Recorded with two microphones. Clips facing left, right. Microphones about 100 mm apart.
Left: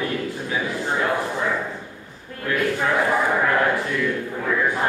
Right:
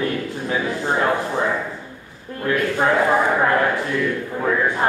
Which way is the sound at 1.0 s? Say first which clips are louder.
Right 3 dB; 25° right (ahead or behind).